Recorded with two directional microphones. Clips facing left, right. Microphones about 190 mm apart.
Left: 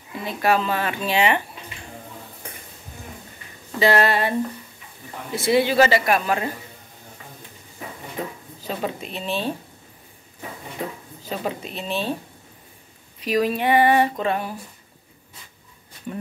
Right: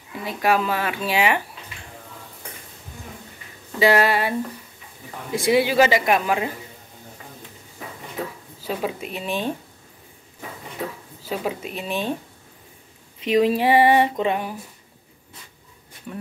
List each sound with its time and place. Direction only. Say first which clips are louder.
0.2 s speech: even; 10° right (ahead or behind)
3.8 s speech: right 1 dB; 10° right (ahead or behind)
8.6 s speech: right 1 dB; 10° right (ahead or behind)
11.2 s speech: right 1 dB; 10° right (ahead or behind)
13.2 s speech: right 3 dB; 25° right (ahead or behind)